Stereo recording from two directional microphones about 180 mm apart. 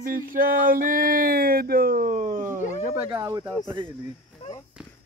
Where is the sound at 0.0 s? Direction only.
50° right (ahead or behind).